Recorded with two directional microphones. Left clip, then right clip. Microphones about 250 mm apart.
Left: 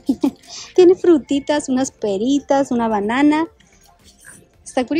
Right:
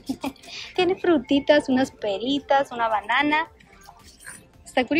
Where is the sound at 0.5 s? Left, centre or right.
Left.